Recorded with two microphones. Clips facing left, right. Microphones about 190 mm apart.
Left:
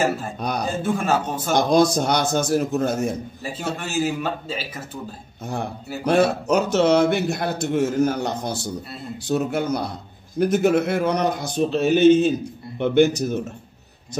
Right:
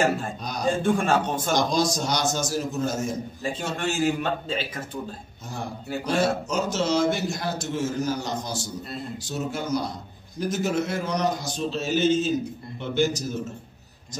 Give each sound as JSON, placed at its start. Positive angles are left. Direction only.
{"t": 0.4, "sound": "speech", "side_deg": 60}
{"t": 0.8, "sound": "a man's voice", "side_deg": 5}
{"t": 1.5, "sound": "speech", "side_deg": 60}
{"t": 3.4, "sound": "a man's voice", "side_deg": 5}
{"t": 6.0, "sound": "speech", "side_deg": 60}